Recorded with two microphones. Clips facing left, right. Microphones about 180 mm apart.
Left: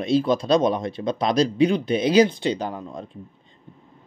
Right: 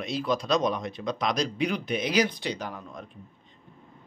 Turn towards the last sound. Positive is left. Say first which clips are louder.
# left 7 dB
turn(degrees=30)  # may be behind; listen again after turning